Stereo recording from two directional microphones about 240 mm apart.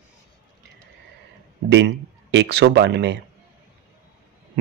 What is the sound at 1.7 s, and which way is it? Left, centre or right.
Speech, right.